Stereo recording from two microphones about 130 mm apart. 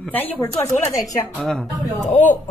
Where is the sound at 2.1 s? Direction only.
70° left (ahead or behind).